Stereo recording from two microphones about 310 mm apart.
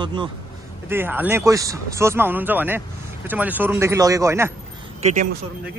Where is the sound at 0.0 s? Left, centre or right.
Centre.